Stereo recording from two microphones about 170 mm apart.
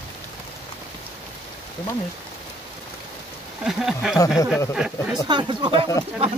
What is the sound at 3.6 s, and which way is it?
Speech, centre (ahead or behind).